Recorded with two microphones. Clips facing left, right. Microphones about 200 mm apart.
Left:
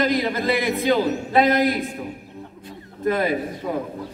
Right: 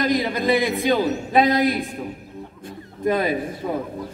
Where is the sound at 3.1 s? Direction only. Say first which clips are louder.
Even; 15° right (ahead or behind).